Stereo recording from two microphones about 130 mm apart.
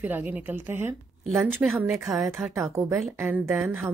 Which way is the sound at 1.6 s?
5° right (ahead or behind).